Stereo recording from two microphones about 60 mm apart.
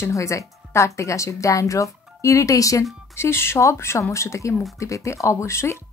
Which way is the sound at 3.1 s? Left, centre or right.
Left.